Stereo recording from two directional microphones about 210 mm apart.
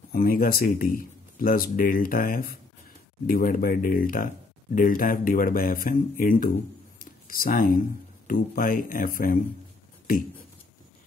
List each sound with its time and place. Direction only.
0.1 s speech: 45° left (ahead or behind)
7.0 s a sound: 45° left (ahead or behind)
8.3 s speech: 45° left (ahead or behind)